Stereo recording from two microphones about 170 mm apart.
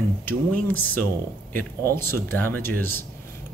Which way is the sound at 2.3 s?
10° left (ahead or behind).